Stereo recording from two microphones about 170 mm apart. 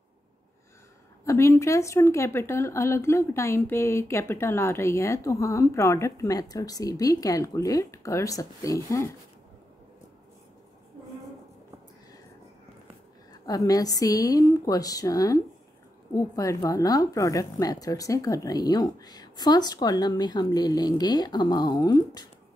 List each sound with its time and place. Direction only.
1.2 s speech: 15° left (ahead or behind)
13.3 s a woman's voice: 20° left (ahead or behind)